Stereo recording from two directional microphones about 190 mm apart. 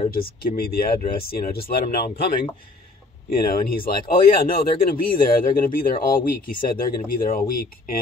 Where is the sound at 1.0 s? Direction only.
50° left (ahead or behind).